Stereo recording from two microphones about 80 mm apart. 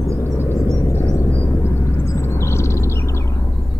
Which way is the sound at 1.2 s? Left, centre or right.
Left.